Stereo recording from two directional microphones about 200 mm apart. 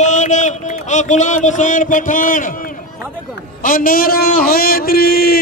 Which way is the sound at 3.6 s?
45° left (ahead or behind).